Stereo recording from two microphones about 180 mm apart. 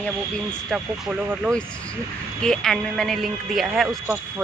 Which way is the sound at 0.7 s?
5° right (ahead or behind).